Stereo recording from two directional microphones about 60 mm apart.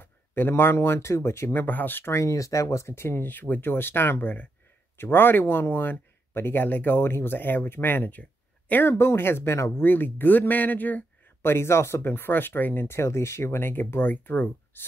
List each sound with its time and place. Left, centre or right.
0.0 s speech: left
2.0 s speech: left
8.2 s a sound: left
8.8 s speech: left
11.5 s speech: left